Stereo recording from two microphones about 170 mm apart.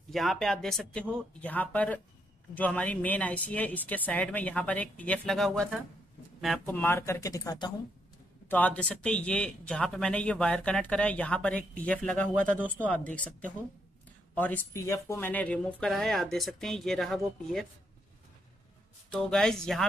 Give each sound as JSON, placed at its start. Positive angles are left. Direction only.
{"t": 0.1, "sound": "speech", "side_deg": 0}
{"t": 8.5, "sound": "speech", "side_deg": 10}
{"t": 19.1, "sound": "speech", "side_deg": 5}